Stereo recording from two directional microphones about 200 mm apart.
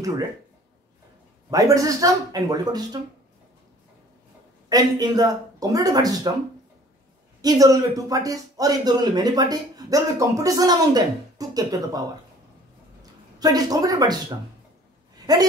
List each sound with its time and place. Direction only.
1.5 s speech: 15° right (ahead or behind)
4.6 s speech: 20° right (ahead or behind)
7.4 s speech: 15° right (ahead or behind)
13.4 s speech: 20° right (ahead or behind)
15.3 s speech: 20° right (ahead or behind)